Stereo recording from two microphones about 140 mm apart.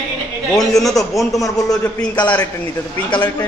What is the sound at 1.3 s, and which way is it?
Speech, 25° left (ahead or behind).